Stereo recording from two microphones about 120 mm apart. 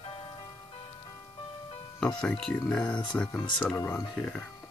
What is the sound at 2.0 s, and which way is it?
Speech, 5° left (ahead or behind).